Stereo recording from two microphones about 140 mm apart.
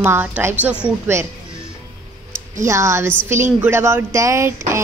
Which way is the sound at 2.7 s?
20° right (ahead or behind).